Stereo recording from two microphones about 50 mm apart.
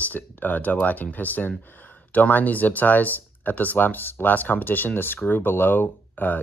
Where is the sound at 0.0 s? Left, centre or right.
Left.